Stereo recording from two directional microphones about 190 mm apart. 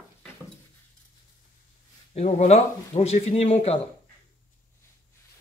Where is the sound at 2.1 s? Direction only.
35° left (ahead or behind).